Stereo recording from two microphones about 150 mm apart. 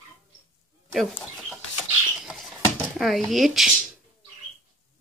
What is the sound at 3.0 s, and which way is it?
Speech, centre (ahead or behind).